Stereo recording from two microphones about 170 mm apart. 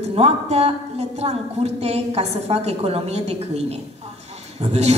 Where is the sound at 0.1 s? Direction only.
35° right (ahead or behind).